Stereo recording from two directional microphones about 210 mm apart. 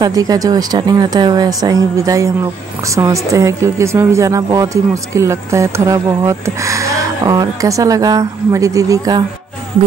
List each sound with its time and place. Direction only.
0.0 s a woman's voice: 15° right (ahead or behind)